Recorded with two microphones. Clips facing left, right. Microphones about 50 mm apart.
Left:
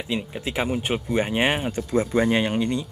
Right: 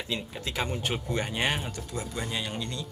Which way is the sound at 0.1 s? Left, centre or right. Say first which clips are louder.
Left 7 dB; left.